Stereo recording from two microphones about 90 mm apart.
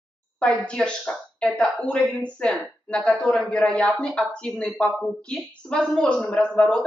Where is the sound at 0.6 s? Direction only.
10° left (ahead or behind).